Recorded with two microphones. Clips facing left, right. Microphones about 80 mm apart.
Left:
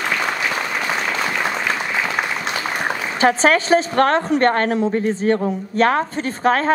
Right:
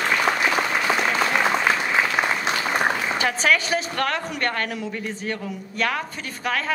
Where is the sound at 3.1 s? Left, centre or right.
Left.